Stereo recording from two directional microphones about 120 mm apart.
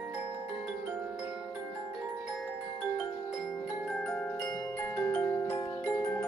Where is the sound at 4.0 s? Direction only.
10° left (ahead or behind).